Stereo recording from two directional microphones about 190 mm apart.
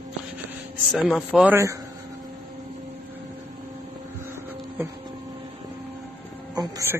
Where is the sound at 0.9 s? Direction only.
Centre (ahead or behind).